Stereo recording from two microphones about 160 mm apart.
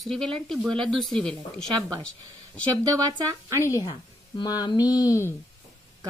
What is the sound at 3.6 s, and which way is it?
Mantra, 20° left (ahead or behind).